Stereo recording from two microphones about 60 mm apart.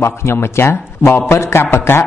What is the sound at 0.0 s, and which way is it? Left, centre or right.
Speech, left.